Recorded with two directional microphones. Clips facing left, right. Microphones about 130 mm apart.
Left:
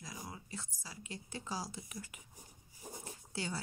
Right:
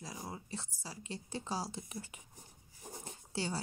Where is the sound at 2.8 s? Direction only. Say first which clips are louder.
Even; 5° left (ahead or behind).